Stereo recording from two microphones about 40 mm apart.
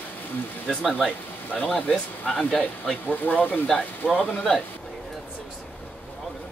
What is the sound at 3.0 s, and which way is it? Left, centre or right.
Speech, left.